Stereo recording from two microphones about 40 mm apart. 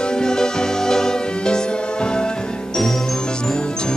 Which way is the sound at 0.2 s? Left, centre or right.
Centre.